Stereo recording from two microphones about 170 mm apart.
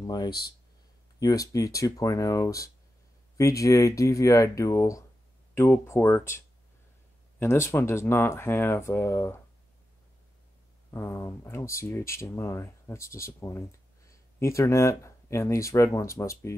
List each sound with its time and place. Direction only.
0.0 s speech: 25° left (ahead or behind)
10.9 s speech: 15° left (ahead or behind)